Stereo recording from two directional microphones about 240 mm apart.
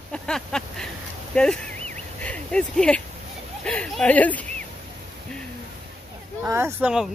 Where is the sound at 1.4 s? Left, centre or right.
Centre.